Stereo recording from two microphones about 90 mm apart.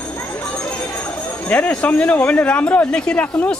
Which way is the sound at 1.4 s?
15° left (ahead or behind).